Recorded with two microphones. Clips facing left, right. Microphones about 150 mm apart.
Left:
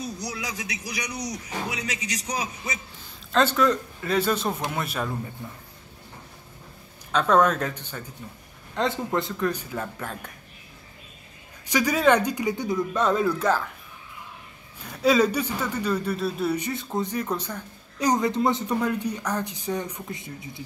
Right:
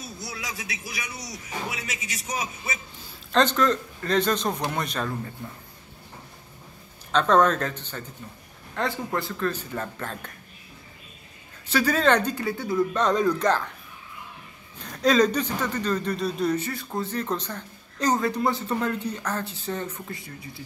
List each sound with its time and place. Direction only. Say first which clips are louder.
0.5 s speech: left 2 dB; 40° left (ahead or behind)
3.3 s a man's voice: even; 5° left (ahead or behind)
7.1 s a man's voice: even; 10° left (ahead or behind)
11.6 s a man's voice: left 1 dB; 15° left (ahead or behind)
12.9 s a man's voice: left 2 dB; 5° left (ahead or behind)
14.8 s a man's voice: even; 10° left (ahead or behind)